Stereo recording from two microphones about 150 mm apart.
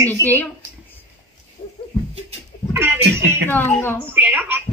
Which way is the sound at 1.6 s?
40° left (ahead or behind).